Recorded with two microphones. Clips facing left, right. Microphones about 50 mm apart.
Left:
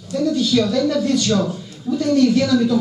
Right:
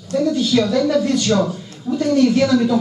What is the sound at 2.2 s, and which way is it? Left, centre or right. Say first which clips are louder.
Speech: right 1 dB; centre.